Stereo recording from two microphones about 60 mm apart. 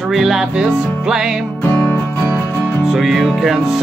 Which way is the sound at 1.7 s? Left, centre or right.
Left.